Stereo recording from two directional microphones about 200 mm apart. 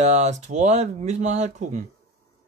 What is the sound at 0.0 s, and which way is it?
Speech, 35° right (ahead or behind).